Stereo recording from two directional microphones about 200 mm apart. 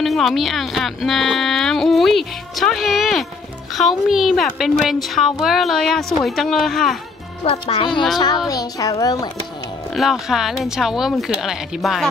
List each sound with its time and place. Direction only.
0.0 s speech: centre (ahead or behind)
7.4 s a child's voice: 25° left (ahead or behind)
9.9 s speech: centre (ahead or behind)